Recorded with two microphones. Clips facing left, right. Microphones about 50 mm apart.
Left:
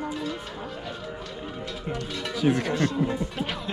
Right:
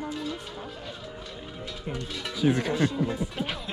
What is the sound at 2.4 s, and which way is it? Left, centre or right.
Speech, left.